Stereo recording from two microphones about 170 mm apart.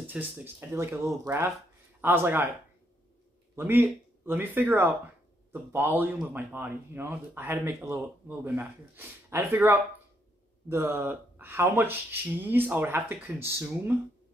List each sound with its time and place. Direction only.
0.0 s speech: 10° right (ahead or behind)
3.5 s speech: 10° right (ahead or behind)